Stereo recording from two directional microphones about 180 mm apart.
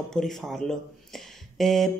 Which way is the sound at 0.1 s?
Centre (ahead or behind).